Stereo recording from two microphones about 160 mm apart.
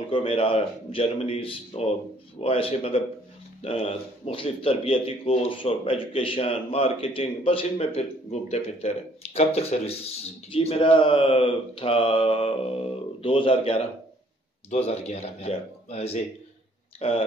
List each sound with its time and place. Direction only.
0.1 s a man's voice: 35° left (ahead or behind)